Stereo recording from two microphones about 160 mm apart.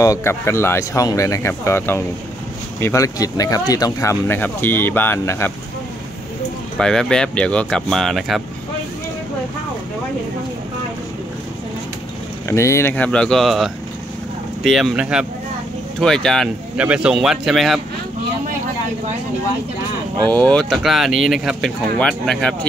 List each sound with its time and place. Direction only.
0.0 s speech: 20° left (ahead or behind)
6.8 s speech: 5° left (ahead or behind)
12.4 s speech: 15° left (ahead or behind); by 17.7 s centre (ahead or behind)
20.2 s speech: 10° left (ahead or behind)